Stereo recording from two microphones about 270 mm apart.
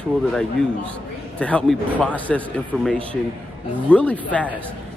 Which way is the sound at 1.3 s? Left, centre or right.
Centre.